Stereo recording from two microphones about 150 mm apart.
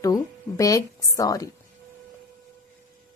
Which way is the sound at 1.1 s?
25° left (ahead or behind).